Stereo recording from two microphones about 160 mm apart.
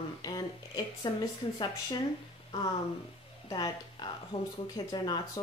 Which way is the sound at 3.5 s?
25° left (ahead or behind).